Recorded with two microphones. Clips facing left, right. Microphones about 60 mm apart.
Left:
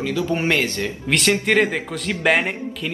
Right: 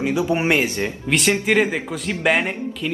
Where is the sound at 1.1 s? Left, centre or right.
Centre.